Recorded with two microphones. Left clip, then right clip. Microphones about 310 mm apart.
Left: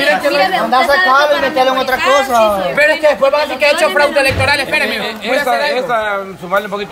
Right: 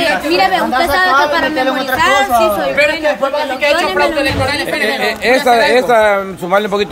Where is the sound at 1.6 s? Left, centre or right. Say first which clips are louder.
Left 2 dB; left.